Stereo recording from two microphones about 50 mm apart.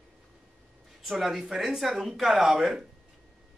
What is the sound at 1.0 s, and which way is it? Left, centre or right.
Speech, centre.